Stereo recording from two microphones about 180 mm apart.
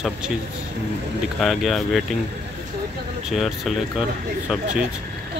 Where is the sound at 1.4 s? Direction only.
Centre (ahead or behind).